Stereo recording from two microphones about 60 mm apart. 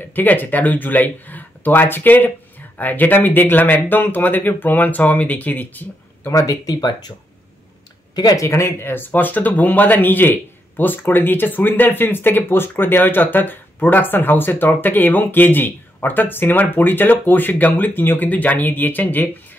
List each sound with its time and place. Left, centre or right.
0.1 s speech: left
6.3 s speech: left
8.2 s speech: left
8.5 s speech: left